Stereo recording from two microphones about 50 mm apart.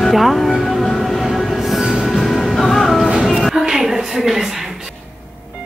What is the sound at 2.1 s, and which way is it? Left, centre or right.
Music, centre.